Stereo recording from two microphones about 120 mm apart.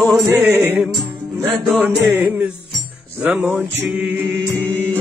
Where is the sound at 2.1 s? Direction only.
15° right (ahead or behind).